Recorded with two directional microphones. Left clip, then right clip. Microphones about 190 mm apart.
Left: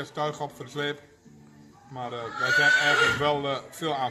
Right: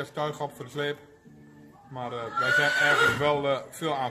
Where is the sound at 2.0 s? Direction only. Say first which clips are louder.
Right 1 dB; 15° right (ahead or behind).